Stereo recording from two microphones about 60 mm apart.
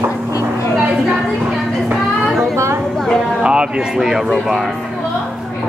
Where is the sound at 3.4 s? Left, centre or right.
Centre.